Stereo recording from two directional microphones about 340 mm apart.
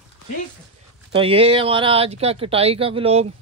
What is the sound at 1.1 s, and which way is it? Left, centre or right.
Speech, centre.